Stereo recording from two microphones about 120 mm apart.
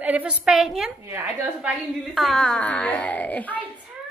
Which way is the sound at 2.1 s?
Centre (ahead or behind).